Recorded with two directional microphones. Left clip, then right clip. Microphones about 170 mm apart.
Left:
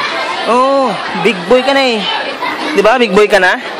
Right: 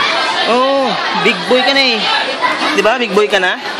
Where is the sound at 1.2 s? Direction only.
30° left (ahead or behind).